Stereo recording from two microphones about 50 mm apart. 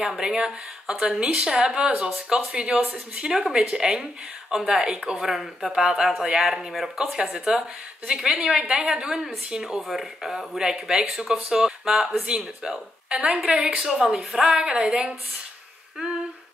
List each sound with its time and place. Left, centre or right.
0.0 s speech: centre